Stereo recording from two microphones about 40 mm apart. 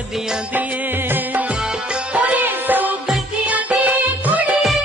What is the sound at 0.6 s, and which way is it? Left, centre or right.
Music, right.